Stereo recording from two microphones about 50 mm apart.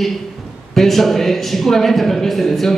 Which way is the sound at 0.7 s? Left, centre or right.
Centre.